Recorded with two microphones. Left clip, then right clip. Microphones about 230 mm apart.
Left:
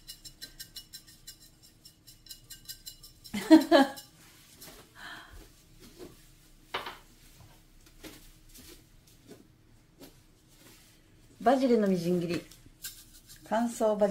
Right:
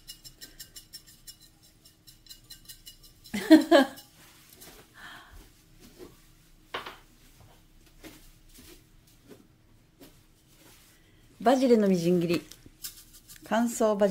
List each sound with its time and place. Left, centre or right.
3.3 s music: right
11.4 s speech: right
13.4 s a sound: right